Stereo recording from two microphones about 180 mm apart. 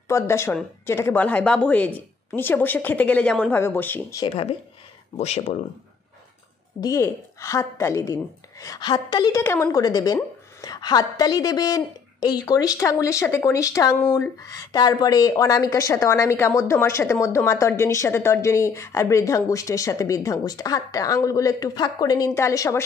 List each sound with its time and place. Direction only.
0.1 s speech: 15° left (ahead or behind)
4.3 s speech: 35° left (ahead or behind)
6.8 s speech: 15° left (ahead or behind)